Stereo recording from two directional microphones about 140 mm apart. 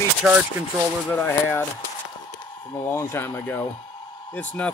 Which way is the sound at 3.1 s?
20° left (ahead or behind).